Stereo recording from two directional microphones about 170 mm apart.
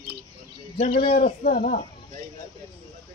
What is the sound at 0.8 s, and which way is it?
A man's voice, 45° left (ahead or behind).